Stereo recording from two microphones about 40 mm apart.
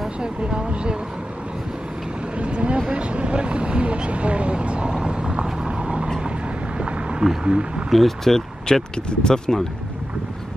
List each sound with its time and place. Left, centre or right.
0.2 s speech: right
2.3 s speech: right
6.8 s a sound: centre
7.4 s speech: right
7.9 s speech: centre